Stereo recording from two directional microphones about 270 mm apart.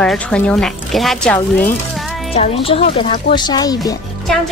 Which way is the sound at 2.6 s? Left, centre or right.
Left.